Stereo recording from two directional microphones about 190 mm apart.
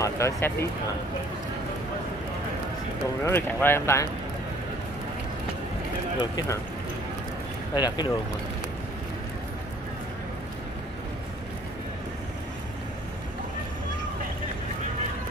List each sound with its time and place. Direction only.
0.0 s speech: 15° left (ahead or behind)
3.3 s speech: 10° left (ahead or behind)
7.7 s speech: 20° left (ahead or behind)